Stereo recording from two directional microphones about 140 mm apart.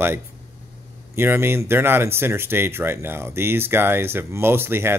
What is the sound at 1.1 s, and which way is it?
Speech, 15° right (ahead or behind).